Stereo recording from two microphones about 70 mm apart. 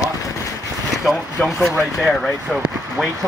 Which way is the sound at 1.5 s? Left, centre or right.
Centre.